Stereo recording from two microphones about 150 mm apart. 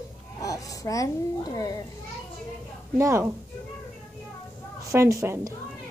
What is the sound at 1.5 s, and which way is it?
Speech, 25° left (ahead or behind).